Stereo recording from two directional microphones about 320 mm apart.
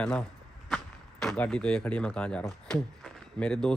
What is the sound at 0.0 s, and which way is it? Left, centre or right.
Speech, centre.